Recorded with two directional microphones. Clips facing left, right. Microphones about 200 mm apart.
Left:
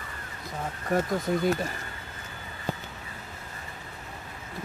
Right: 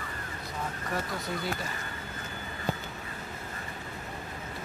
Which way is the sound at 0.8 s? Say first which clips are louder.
Left 10 dB; 45° left (ahead or behind).